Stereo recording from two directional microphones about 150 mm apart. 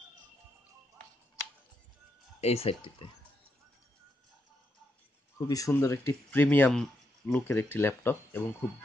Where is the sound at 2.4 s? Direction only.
40° left (ahead or behind).